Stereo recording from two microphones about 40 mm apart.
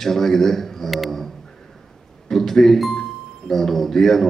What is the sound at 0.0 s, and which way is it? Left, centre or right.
A man's voice, centre.